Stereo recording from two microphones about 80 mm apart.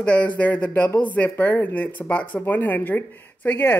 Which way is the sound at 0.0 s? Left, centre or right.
Centre.